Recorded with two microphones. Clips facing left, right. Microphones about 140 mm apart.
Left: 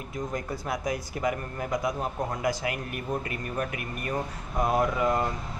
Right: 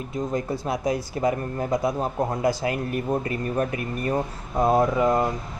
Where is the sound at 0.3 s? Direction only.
25° right (ahead or behind).